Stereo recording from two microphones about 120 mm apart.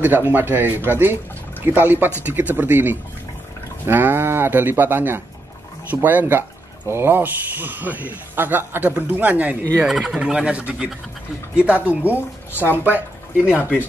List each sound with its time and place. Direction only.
0.0 s a man's voice: 15° right (ahead or behind)
13.5 s a man's voice: 10° right (ahead or behind)